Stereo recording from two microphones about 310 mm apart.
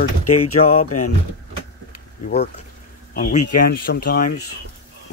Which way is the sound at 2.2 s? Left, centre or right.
Left.